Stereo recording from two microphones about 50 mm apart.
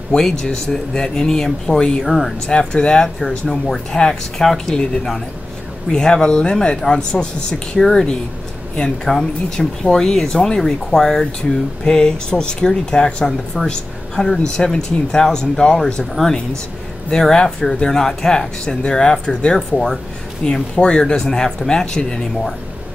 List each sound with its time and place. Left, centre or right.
0.1 s speech: centre
2.7 s speech: centre
5.9 s a woman's voice: centre